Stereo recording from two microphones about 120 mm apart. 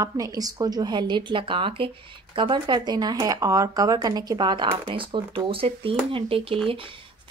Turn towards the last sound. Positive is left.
turn(degrees=-45)  # may be behind; listen again after turning